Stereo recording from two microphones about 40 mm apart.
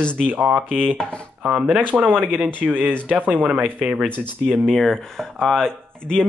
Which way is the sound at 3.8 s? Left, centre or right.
Centre.